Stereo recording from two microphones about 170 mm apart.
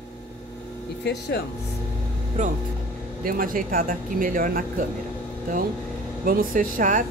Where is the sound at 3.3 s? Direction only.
55° right (ahead or behind).